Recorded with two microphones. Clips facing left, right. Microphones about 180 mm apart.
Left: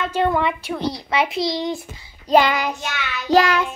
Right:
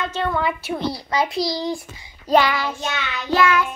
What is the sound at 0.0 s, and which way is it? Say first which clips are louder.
Speech: left 4 dB; 15° left (ahead or behind).